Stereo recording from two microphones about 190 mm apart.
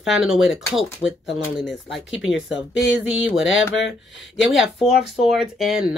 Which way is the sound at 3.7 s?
75° left (ahead or behind).